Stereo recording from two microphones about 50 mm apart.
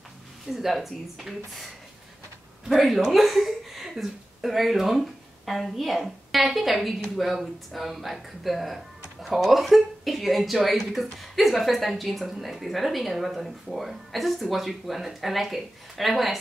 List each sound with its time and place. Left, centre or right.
0.5 s speech: centre
2.7 s speech: centre